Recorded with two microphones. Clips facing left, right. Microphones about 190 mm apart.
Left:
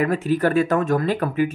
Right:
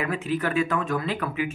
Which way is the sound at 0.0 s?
40° left (ahead or behind).